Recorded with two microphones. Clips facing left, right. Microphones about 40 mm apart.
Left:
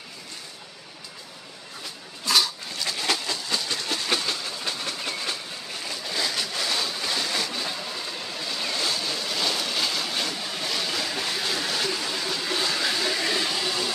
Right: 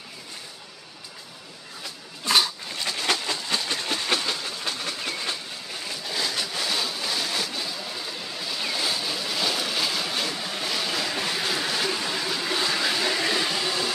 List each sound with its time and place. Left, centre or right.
2.2 s dog: right
3.3 s train: right
4.1 s train: centre
7.8 s waves: centre